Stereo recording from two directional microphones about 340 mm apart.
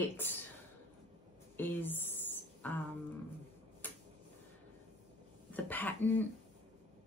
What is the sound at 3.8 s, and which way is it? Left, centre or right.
Tick-tock, centre.